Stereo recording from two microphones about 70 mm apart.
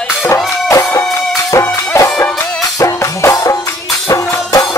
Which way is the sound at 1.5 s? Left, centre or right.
Left.